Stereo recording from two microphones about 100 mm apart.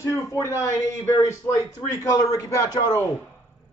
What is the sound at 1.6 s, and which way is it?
A man's voice, 35° left (ahead or behind).